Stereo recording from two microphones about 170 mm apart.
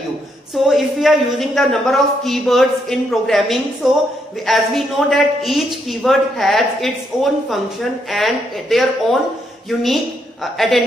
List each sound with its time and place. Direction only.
0.7 s a man's voice: centre (ahead or behind)